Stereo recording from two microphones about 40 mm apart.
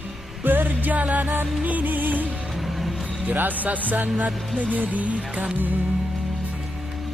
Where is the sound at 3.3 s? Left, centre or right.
Right.